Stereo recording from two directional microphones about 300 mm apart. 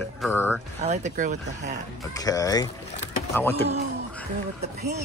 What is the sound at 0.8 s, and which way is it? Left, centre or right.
Speech, right.